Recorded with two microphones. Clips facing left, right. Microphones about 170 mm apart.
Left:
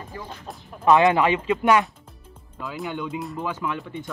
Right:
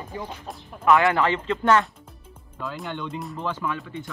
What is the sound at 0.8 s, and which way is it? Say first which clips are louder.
Speech: left 2 dB; 20° left (ahead or behind).